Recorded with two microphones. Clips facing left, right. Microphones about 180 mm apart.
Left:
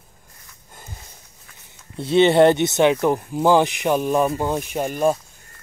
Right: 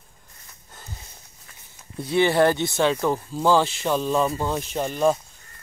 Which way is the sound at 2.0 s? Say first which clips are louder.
Left 5 dB; 25° left (ahead or behind).